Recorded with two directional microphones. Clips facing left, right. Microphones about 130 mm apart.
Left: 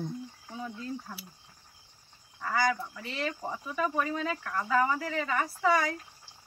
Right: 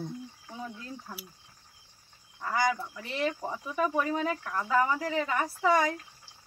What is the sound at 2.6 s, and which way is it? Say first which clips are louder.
Speech: right 1 dB; 15° right (ahead or behind).